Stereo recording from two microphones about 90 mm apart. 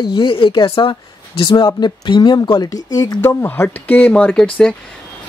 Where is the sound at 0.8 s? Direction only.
65° left (ahead or behind).